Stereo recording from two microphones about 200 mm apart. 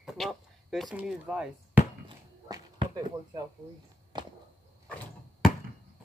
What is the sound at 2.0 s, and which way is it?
Dog, 20° right (ahead or behind).